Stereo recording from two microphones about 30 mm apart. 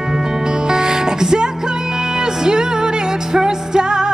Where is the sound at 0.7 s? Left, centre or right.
Right.